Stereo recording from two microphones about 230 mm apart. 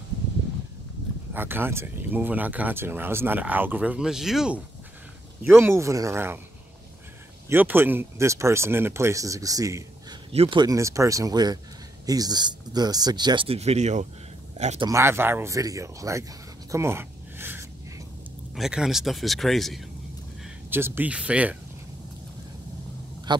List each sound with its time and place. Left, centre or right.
1.3 s speech: centre
7.4 s speech: centre; by 14.9 s right
14.9 s speech: centre
16.7 s a sound: centre
18.5 s a man's voice: centre